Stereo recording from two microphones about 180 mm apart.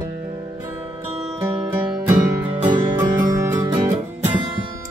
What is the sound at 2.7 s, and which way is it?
Music, 25° right (ahead or behind).